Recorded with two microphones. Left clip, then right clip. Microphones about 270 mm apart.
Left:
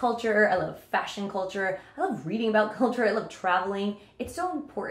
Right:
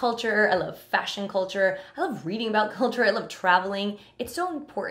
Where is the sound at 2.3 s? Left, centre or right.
Right.